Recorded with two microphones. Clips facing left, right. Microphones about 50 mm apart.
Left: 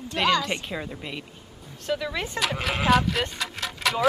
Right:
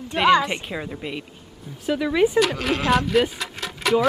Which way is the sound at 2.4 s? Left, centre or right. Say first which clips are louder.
Right 6 dB; centre.